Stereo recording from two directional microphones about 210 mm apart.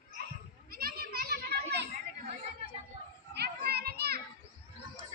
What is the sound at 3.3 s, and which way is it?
Children playing, 50° right (ahead or behind).